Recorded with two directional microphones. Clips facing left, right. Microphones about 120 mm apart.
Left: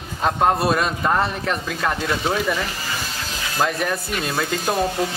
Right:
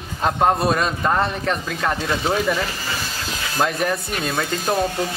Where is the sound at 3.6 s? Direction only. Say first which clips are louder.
Right 1 dB; centre (ahead or behind).